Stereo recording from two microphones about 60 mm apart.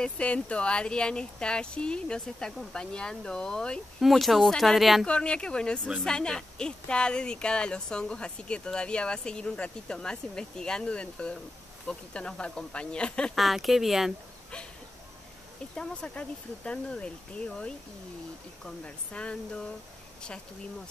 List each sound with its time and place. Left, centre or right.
0.0 s speech: left
4.0 s speech: centre
5.0 s speech: centre
13.3 s speech: centre
15.7 s speech: centre
18.9 s speech: centre